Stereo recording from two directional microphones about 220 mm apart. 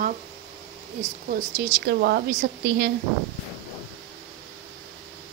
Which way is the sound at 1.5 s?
50° right (ahead or behind).